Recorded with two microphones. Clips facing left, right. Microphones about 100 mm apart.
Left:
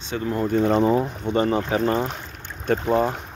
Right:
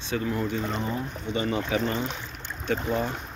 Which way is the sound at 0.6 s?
70° left (ahead or behind).